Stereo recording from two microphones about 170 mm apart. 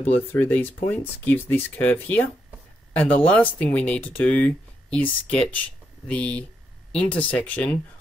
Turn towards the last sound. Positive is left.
turn(degrees=10)  # may be behind; listen again after turning